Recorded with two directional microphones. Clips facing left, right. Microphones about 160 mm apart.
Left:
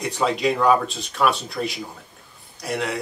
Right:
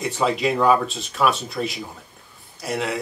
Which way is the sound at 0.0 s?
Centre (ahead or behind).